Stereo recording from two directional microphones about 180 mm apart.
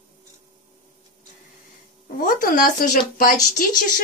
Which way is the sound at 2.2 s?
50° left (ahead or behind).